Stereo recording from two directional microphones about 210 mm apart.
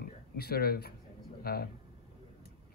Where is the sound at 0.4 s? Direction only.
45° left (ahead or behind).